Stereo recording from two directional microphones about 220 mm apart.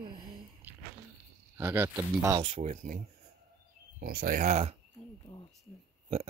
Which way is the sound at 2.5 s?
30° right (ahead or behind).